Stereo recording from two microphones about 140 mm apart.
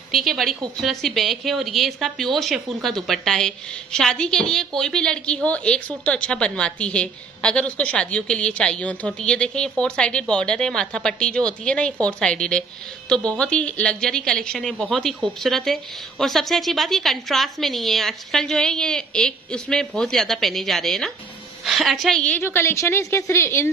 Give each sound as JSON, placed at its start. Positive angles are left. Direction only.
{"t": 0.1, "sound": "a woman's voice", "side_deg": 0}